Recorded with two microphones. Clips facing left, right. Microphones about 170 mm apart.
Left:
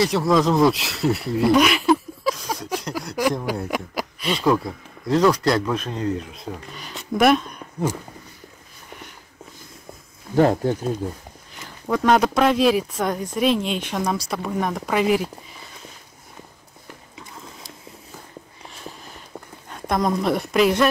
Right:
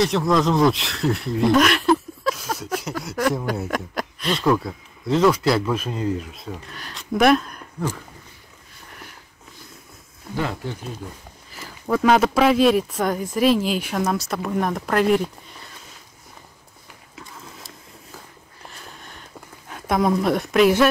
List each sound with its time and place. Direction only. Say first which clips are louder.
0.0 s speech: left 1 dB; centre (ahead or behind)
10.3 s speech: left 10 dB; 45° left (ahead or behind)
11.5 s speech: right 1 dB; 5° right (ahead or behind)
17.1 s a sound: right 2 dB; centre (ahead or behind)
19.7 s speech: right 2 dB; 5° right (ahead or behind)